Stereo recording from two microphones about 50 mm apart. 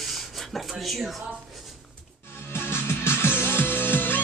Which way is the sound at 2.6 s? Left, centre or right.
Left.